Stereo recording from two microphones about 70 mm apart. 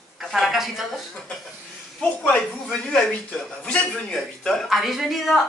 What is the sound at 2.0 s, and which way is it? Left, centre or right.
Speech, centre.